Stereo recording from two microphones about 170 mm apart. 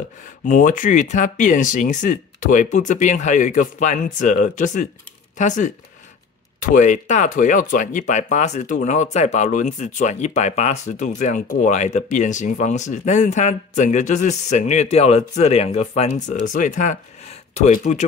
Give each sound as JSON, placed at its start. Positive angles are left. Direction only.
{"t": 0.5, "sound": "speech", "side_deg": 50}